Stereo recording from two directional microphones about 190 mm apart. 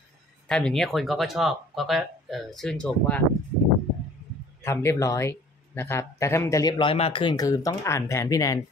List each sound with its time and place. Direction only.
0.5 s speech: 5° left (ahead or behind)
4.6 s speech: 15° left (ahead or behind)
6.8 s speech: 30° left (ahead or behind)